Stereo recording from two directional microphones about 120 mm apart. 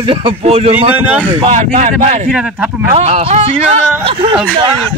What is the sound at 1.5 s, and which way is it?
Speech, 70° right (ahead or behind).